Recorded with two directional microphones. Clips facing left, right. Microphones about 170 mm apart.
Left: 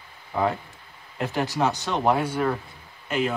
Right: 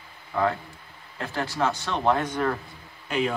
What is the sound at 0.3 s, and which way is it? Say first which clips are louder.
Speech: even; 15° left (ahead or behind).